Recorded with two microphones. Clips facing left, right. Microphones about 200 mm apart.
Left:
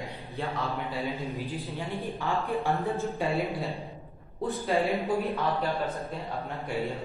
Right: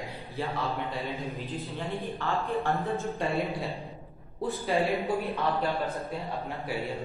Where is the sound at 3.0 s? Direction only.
Centre (ahead or behind).